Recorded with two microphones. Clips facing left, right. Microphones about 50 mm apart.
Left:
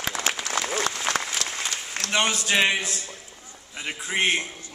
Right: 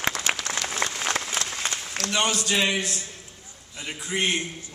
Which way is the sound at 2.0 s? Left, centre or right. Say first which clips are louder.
Left 1 dB; left.